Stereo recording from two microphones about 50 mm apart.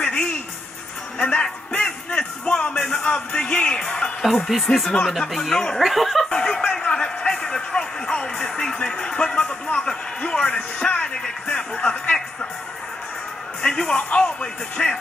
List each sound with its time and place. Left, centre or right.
0.0 s a sound: centre
1.2 s music: centre
3.0 s speech: left
4.5 s speech: centre
6.3 s a sound: centre
7.4 s music: centre
8.8 s speech: centre
13.6 s speech: centre